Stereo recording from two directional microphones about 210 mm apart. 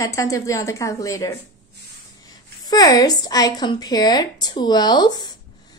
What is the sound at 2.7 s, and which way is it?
A woman's voice, 15° left (ahead or behind).